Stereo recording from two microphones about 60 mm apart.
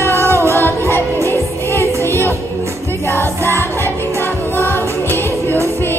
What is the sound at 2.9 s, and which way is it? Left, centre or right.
Music, left.